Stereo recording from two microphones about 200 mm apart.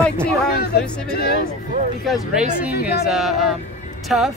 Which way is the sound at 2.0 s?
Centre (ahead or behind).